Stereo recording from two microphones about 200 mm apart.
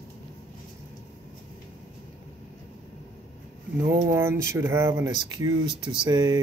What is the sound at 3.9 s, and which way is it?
Speech, 15° right (ahead or behind).